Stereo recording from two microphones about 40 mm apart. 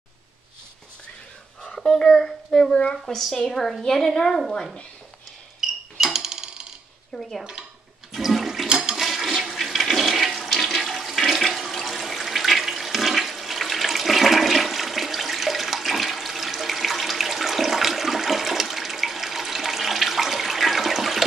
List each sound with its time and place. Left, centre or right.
1.6 s a child's voice: centre
5.6 s a sound: centre
7.2 s a woman's voice: centre
8.1 s toilet flush: centre
8.6 s toilet flush: centre
8.9 s toilet flush: centre